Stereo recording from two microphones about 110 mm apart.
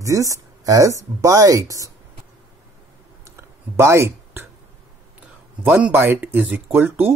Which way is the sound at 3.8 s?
25° right (ahead or behind).